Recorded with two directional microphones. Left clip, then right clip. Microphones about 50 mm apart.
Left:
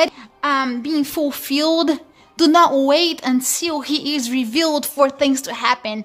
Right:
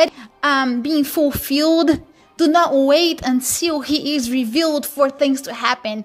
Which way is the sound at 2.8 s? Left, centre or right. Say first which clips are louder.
Right 1 dB; right.